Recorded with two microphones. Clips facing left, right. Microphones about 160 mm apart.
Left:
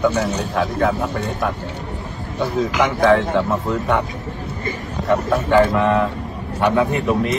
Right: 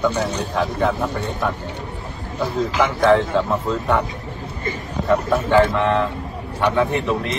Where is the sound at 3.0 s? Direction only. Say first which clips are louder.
Even; centre (ahead or behind).